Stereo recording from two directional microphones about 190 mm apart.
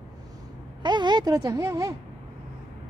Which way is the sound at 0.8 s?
25° right (ahead or behind).